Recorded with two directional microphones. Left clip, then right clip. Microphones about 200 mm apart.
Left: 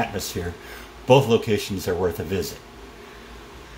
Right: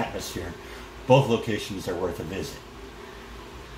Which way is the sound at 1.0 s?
55° left (ahead or behind).